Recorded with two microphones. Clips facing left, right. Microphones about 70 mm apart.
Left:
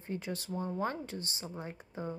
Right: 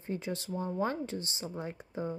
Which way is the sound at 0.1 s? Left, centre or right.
Left.